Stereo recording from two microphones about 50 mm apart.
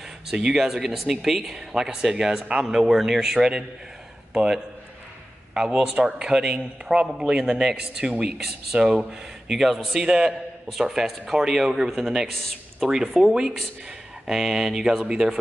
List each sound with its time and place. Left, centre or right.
0.3 s a man's voice: centre
5.5 s a man's voice: centre
7.1 s a man's voice: centre